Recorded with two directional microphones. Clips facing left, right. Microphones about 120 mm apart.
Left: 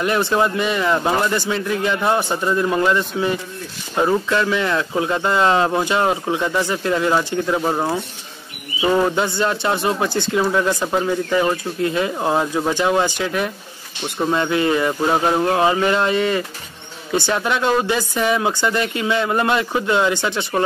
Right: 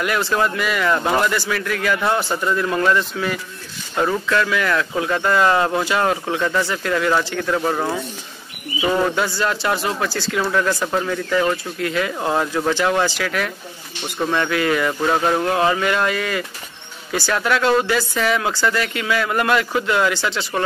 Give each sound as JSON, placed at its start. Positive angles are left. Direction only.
{"t": 0.0, "sound": "speech", "side_deg": 25}
{"t": 9.1, "sound": "speech", "side_deg": 25}